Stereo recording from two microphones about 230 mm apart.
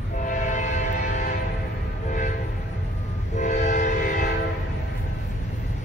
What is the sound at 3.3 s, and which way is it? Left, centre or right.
Train, left.